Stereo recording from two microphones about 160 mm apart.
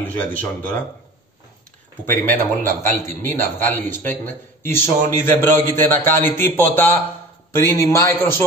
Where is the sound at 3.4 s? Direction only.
10° left (ahead or behind).